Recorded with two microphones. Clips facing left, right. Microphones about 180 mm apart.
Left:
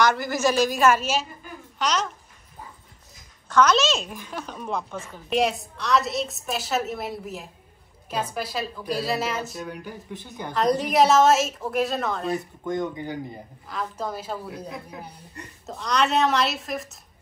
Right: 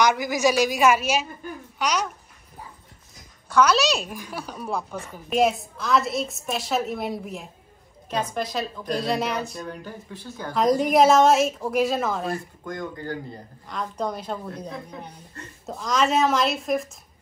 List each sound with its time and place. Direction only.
0.1 s a woman's voice: 15° right (ahead or behind)
3.4 s a woman's voice: 10° right (ahead or behind); by 10.5 s 20° left (ahead or behind)
10.5 s a woman's voice: centre (ahead or behind)
12.4 s speech: 20° left (ahead or behind)
13.7 s a woman's voice: 5° left (ahead or behind)